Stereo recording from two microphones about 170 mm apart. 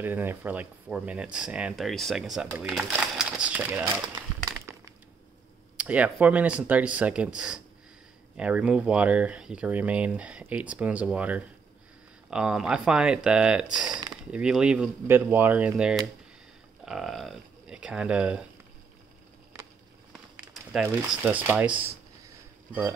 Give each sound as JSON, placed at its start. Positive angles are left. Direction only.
{"t": 0.0, "sound": "speech", "side_deg": -10}
{"t": 5.8, "sound": "speech", "side_deg": -5}
{"t": 13.8, "sound": "speech", "side_deg": -25}
{"t": 14.3, "sound": "speech", "side_deg": -5}
{"t": 21.1, "sound": "speech", "side_deg": -10}